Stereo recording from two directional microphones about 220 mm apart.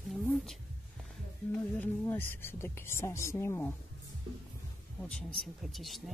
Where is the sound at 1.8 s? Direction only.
10° left (ahead or behind).